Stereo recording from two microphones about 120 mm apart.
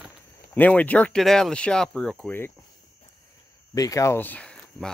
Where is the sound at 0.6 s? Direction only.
10° left (ahead or behind).